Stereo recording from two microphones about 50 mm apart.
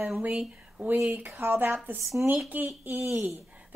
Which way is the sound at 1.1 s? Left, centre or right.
Right.